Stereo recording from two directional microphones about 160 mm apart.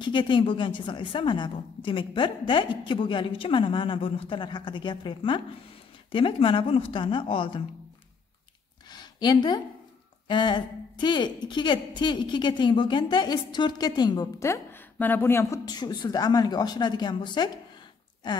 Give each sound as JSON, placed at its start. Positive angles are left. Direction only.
{"t": 0.0, "sound": "a woman's voice", "side_deg": 30}
{"t": 8.9, "sound": "a sound", "side_deg": 25}
{"t": 10.2, "sound": "a woman's voice", "side_deg": 30}